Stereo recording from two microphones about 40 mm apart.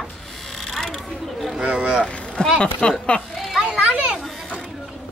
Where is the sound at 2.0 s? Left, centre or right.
Centre.